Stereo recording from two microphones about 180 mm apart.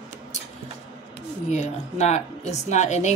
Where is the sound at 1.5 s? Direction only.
40° left (ahead or behind).